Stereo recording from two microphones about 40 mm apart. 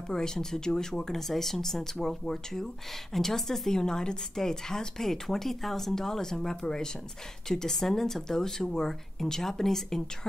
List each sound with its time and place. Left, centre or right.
0.1 s speech: centre
3.8 s speech: centre